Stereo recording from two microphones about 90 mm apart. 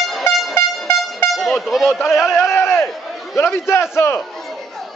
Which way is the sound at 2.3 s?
30° left (ahead or behind).